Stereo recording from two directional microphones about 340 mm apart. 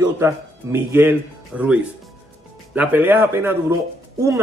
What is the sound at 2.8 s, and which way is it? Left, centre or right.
A man's voice, centre.